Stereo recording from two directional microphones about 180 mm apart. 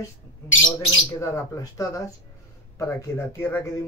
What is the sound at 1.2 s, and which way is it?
Speech, 15° left (ahead or behind).